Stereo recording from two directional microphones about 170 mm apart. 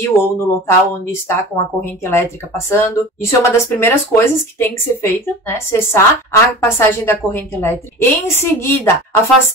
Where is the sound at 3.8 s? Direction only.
15° left (ahead or behind).